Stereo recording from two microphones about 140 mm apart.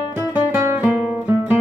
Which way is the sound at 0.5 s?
15° right (ahead or behind).